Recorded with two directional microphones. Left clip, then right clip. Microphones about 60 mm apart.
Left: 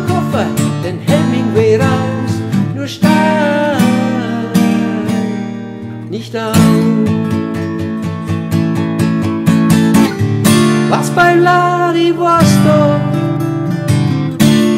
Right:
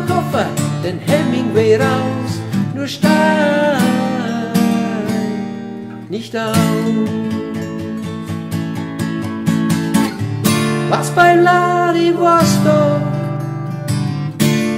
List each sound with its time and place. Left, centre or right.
0.1 s music: centre
2.5 s music: left
3.3 s music: centre
3.8 s music: left
6.5 s music: left
8.5 s music: left
10.9 s music: centre
13.9 s music: left